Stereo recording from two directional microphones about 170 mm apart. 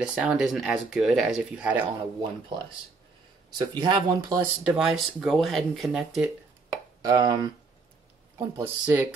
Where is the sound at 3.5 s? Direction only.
25° right (ahead or behind).